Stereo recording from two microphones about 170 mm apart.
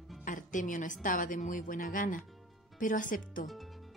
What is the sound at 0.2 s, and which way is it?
Music, 50° left (ahead or behind).